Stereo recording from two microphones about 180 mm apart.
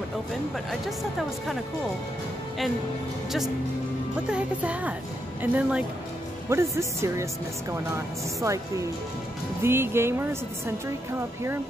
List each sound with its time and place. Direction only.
4.3 s speech: 5° right (ahead or behind)